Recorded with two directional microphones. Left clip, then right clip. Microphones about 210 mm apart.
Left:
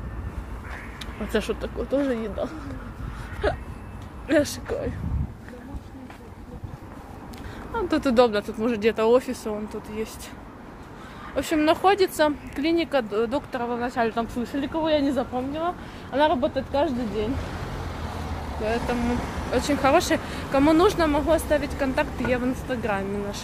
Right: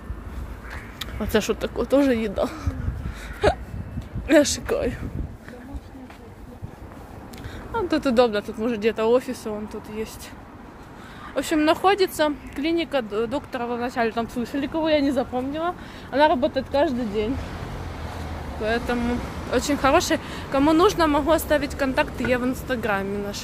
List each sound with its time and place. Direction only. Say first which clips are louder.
0.9 s speech: right 4 dB; 20° right (ahead or behind)
7.7 s speech: right 1 dB; 10° right (ahead or behind)
11.3 s speech: right 1 dB; 15° right (ahead or behind)
18.6 s speech: right 2 dB; 15° right (ahead or behind)